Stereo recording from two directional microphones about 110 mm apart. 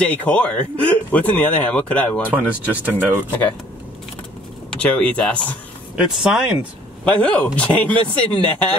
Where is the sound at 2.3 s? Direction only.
15° right (ahead or behind).